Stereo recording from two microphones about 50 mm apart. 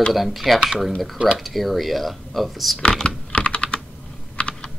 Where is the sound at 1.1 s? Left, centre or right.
Centre.